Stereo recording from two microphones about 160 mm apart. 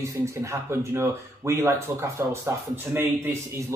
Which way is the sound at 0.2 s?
15° right (ahead or behind).